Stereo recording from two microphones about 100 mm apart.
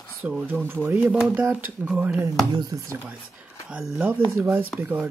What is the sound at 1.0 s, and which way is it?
Speech, 10° right (ahead or behind).